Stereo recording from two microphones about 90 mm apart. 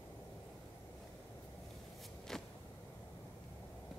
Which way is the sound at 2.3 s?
5° left (ahead or behind).